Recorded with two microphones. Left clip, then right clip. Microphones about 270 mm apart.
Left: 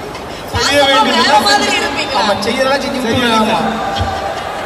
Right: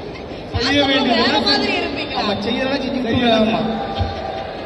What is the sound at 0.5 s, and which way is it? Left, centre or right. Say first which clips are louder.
A man's voice: left 6 dB; left.